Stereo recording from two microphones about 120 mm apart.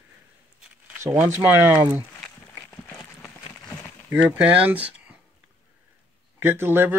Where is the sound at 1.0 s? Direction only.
20° right (ahead or behind).